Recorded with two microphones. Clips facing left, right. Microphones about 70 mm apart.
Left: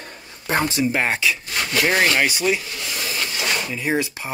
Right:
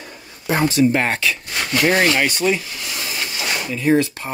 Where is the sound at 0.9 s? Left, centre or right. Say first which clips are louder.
Right 2 dB; centre.